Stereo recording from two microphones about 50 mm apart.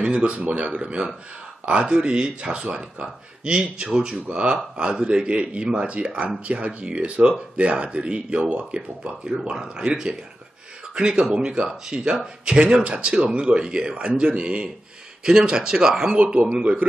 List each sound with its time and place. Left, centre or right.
0.0 s speech: centre
16.2 s speech: right